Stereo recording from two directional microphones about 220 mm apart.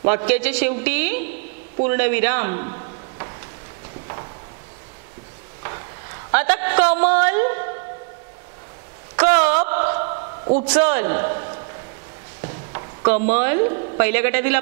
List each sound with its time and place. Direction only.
0.0 s a man's voice: 15° right (ahead or behind)
6.3 s a sound: 15° right (ahead or behind)
9.2 s a sound: 10° right (ahead or behind)
10.4 s a man's voice: 25° right (ahead or behind)
10.8 s a man's voice: 15° right (ahead or behind)
12.7 s a man's voice: 15° right (ahead or behind)